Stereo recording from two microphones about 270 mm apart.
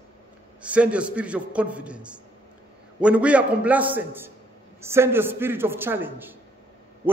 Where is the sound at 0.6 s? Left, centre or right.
Centre.